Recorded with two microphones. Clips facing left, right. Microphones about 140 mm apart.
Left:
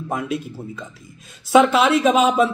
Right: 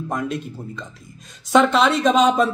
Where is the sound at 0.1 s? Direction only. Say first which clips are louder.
Left 2 dB; 5° left (ahead or behind).